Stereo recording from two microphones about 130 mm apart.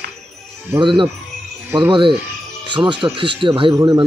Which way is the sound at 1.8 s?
40° right (ahead or behind).